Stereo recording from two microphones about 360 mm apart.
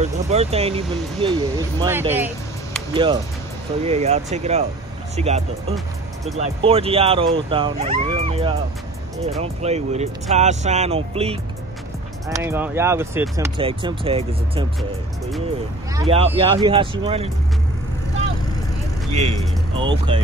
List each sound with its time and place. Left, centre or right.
0.0 s speech: centre
2.1 s vehicle: centre
3.8 s speech: centre
15.9 s speech: centre
19.1 s speech: centre